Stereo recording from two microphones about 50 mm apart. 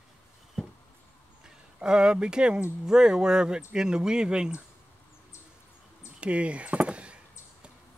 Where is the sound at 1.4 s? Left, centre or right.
Centre.